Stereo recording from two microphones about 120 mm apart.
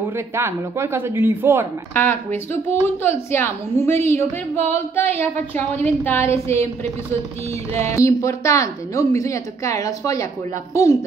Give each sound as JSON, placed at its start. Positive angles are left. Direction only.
{"t": 0.4, "sound": "speech", "side_deg": -20}
{"t": 2.0, "sound": "a woman's voice", "side_deg": 20}
{"t": 7.7, "sound": "a woman's voice", "side_deg": 25}